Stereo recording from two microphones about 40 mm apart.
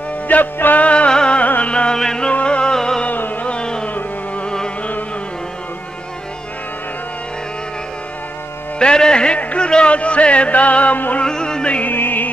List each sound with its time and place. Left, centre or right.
0.3 s music: left
0.8 s music: left
1.4 s music: left
1.7 s music: left
2.0 s music: centre
2.4 s music: left
3.1 s music: left
3.4 s music: left
8.7 s music: left
11.2 s music: centre
11.8 s music: left